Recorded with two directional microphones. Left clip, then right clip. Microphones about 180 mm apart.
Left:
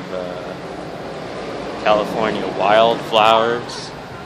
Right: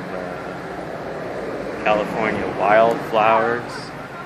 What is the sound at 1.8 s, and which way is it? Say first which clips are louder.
Speech: left 3 dB; 20° left (ahead or behind).